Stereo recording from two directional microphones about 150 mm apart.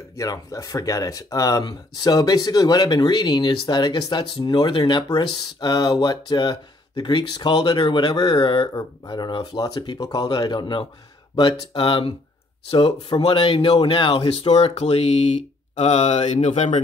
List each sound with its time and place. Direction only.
0.2 s speech: 20° left (ahead or behind); by 16.8 s 50° left (ahead or behind)